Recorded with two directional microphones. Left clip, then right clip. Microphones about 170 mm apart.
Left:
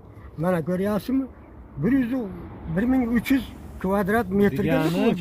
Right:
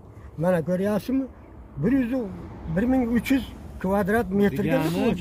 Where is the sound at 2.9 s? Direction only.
15° right (ahead or behind).